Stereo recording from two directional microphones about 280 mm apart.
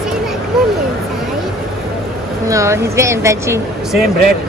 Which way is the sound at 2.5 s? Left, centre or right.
Centre.